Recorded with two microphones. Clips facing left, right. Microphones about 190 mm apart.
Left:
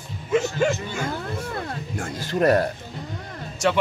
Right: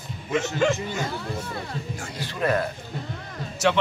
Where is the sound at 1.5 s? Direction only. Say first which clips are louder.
Left 2 dB; 55° left (ahead or behind).